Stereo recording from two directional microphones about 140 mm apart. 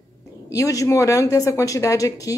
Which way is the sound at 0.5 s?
25° left (ahead or behind).